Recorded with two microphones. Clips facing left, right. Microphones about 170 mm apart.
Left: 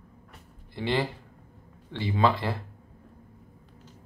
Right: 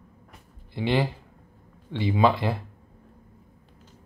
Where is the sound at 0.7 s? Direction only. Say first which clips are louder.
Right 3 dB; 15° right (ahead or behind).